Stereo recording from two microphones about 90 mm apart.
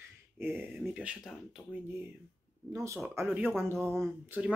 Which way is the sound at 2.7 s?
35° right (ahead or behind).